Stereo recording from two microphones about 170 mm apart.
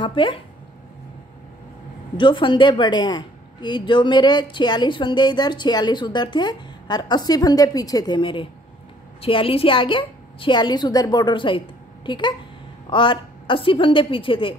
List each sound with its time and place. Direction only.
0.0 s a woman's voice: 30° left (ahead or behind)
2.1 s a woman's voice: 30° left (ahead or behind)